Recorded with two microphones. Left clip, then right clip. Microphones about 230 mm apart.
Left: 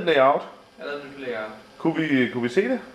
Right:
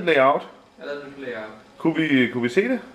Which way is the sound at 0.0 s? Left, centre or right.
Centre.